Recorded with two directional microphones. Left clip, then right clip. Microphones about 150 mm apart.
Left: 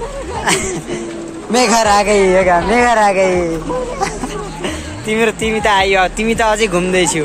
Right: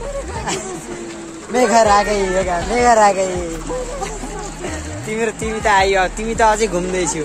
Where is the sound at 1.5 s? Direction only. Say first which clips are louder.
Left 1 dB; 20° left (ahead or behind).